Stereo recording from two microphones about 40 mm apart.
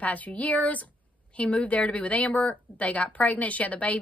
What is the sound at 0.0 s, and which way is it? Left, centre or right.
Speech, left.